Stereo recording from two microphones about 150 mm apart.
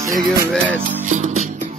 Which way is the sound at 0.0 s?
20° right (ahead or behind).